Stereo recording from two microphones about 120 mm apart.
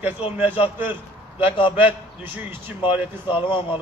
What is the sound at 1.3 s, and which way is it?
Speech, 45° left (ahead or behind).